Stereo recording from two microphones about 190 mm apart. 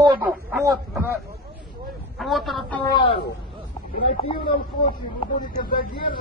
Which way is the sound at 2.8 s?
25° left (ahead or behind).